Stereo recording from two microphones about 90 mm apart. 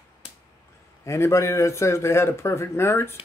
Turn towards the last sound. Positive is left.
turn(degrees=30)  # may be behind; listen again after turning